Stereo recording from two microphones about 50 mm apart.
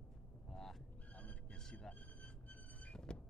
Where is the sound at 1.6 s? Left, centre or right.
Centre.